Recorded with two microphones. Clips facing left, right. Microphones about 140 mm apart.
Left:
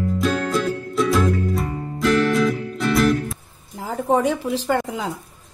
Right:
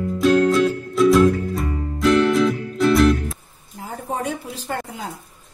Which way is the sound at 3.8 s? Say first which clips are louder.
Left 7 dB; 90° left.